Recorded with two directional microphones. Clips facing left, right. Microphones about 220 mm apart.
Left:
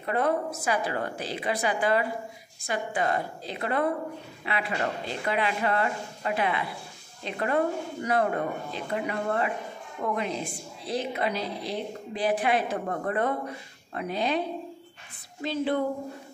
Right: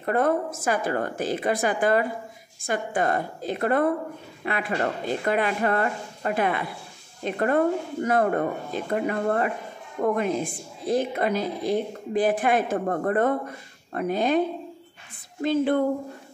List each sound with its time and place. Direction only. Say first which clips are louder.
0.0 s a woman's voice: right 4 dB; 50° right (ahead or behind)
15.4 s a woman's voice: right 5 dB; 50° right (ahead or behind)